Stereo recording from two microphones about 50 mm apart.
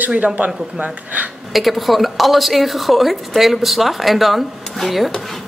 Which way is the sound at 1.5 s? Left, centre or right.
Centre.